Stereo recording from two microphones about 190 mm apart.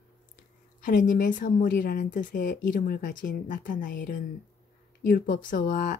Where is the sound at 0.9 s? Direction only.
45° left (ahead or behind).